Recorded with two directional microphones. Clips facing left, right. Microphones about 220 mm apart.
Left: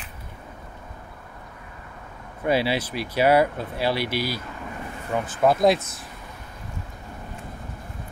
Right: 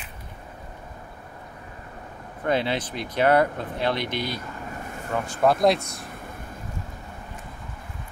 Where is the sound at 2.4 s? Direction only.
10° left (ahead or behind).